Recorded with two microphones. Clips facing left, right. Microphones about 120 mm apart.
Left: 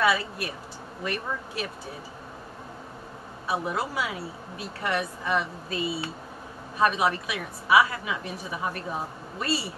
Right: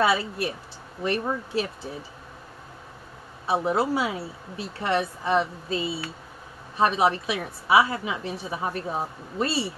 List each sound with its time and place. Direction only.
0.0 s speech: 30° right (ahead or behind)
3.4 s speech: 30° right (ahead or behind)